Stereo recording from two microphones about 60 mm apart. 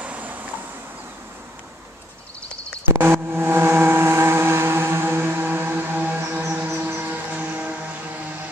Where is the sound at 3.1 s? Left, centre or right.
Right.